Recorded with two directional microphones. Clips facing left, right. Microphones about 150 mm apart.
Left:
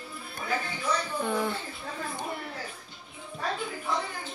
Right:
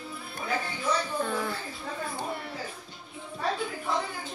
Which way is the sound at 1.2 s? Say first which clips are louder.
Left 1 dB; 20° left (ahead or behind).